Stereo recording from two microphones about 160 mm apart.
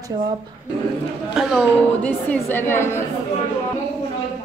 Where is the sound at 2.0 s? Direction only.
10° left (ahead or behind).